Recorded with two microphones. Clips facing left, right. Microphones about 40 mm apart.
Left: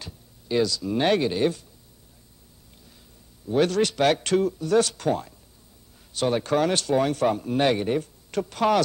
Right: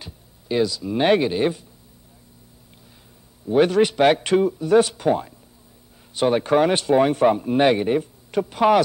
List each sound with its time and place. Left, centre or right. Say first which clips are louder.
0.0 s speech: right 1 dB; centre
3.4 s speech: right 5 dB; centre